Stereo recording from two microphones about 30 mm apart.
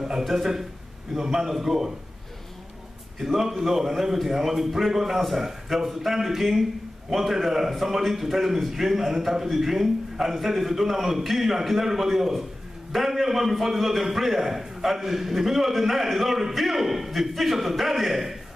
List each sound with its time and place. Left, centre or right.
1.3 s a man's voice: centre
3.2 s a man's voice: centre